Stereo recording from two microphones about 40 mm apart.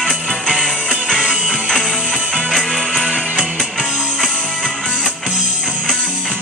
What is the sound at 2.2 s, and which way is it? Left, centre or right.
Music, centre.